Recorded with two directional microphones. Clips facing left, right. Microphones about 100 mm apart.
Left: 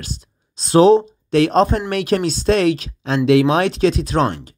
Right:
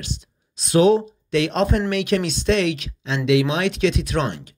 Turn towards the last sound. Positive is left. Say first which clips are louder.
# left 5 dB
turn(degrees=35)  # may be behind; listen again after turning